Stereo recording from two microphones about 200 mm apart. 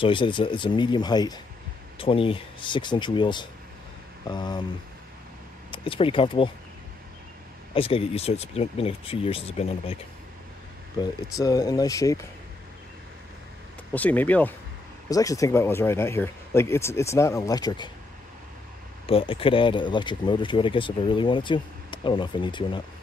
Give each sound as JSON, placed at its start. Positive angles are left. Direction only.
{"t": 0.0, "sound": "speech", "side_deg": 25}
{"t": 5.7, "sound": "speech", "side_deg": 25}
{"t": 7.7, "sound": "speech", "side_deg": 30}
{"t": 11.0, "sound": "speech", "side_deg": 15}
{"t": 13.9, "sound": "speech", "side_deg": 10}
{"t": 19.0, "sound": "speech", "side_deg": 30}